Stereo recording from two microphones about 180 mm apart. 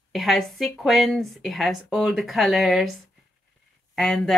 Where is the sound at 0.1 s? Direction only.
Centre (ahead or behind).